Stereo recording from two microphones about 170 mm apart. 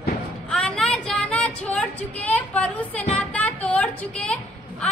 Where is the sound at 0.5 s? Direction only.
5° left (ahead or behind).